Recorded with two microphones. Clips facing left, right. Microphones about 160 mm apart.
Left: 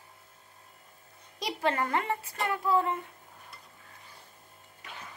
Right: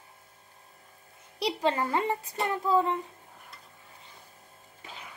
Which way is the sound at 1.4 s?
20° right (ahead or behind).